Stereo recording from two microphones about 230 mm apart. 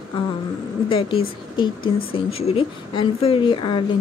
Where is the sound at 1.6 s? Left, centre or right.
Left.